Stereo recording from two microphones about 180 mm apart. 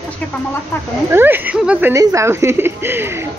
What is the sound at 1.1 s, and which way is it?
Speech, 10° right (ahead or behind).